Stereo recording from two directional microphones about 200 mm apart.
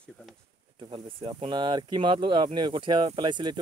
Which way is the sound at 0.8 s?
25° right (ahead or behind).